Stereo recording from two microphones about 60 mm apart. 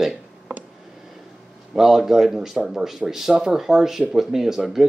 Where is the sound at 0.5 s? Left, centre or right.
Right.